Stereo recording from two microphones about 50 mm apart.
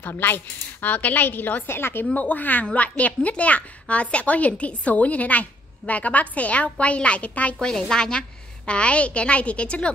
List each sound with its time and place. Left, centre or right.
0.1 s a woman's voice: left
2.1 s a woman's voice: left
7.6 s speech: centre